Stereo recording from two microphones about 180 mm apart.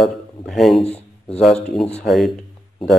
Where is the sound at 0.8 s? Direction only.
35° left (ahead or behind).